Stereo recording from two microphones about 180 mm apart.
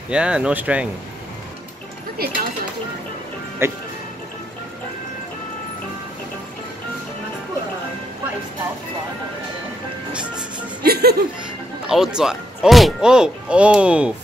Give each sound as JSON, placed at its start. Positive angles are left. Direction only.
{"t": 0.1, "sound": "speech", "side_deg": -5}
{"t": 2.1, "sound": "speech", "side_deg": -60}
{"t": 3.6, "sound": "speech", "side_deg": -15}
{"t": 10.9, "sound": "speech", "side_deg": -60}
{"t": 11.9, "sound": "speech", "side_deg": -5}